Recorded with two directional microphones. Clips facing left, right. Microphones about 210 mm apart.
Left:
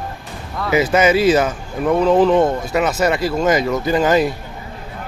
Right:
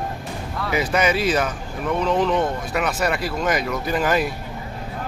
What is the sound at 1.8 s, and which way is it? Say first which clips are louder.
Speech: left 7 dB; 35° left (ahead or behind).